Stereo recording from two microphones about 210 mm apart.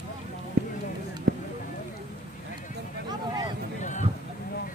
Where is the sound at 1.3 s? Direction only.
50° right (ahead or behind).